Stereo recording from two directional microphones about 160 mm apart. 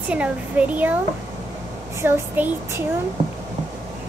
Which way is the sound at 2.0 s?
15° right (ahead or behind).